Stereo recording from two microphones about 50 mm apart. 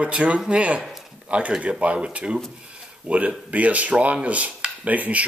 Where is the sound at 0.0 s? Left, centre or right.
Right.